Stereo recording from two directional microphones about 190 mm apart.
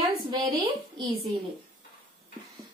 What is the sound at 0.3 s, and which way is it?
Speech, 20° right (ahead or behind).